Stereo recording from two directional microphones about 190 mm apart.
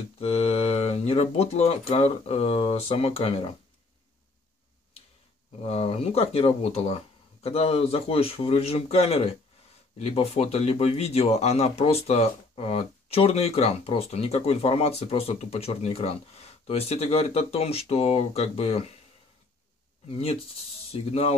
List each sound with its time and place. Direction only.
0.2 s speech: 30° left (ahead or behind)
5.6 s speech: 30° left (ahead or behind)
20.1 s speech: 30° left (ahead or behind)